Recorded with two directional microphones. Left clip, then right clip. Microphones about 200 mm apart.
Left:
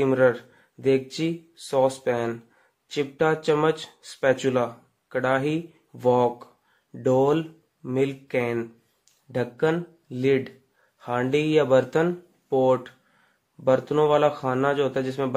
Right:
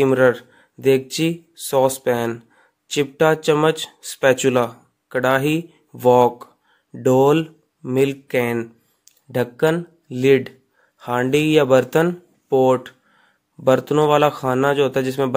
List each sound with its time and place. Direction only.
0.0 s speech: 40° right (ahead or behind)